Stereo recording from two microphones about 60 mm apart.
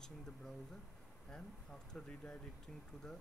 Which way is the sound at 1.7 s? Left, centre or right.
Centre.